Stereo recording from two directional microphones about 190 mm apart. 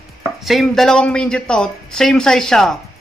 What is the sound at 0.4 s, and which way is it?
Speech, centre (ahead or behind).